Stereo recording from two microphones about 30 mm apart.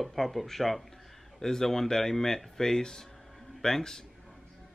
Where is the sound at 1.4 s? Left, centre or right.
Centre.